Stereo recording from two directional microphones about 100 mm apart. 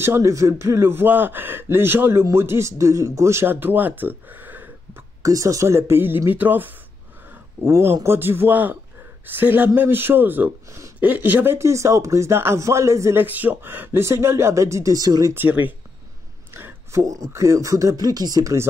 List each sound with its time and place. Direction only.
0.0 s speech: 30° right (ahead or behind)
5.2 s speech: 35° right (ahead or behind)
15.3 s speech: 20° right (ahead or behind)